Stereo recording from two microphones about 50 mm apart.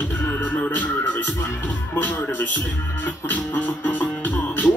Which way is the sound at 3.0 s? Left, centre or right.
Left.